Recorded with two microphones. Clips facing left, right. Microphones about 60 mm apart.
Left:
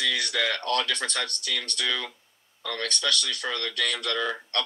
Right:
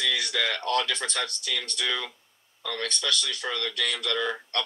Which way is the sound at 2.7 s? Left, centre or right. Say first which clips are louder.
Left 1 dB; left.